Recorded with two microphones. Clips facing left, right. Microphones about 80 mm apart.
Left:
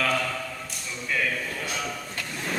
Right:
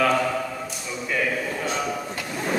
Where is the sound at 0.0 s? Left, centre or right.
Centre.